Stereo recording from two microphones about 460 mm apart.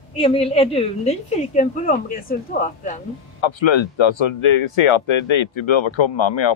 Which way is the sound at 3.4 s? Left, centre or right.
Left.